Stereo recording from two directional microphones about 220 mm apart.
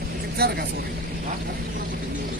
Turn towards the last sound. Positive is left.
turn(degrees=-45)  # may be behind; listen again after turning